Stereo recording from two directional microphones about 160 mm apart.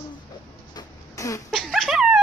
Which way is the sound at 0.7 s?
20° left (ahead or behind).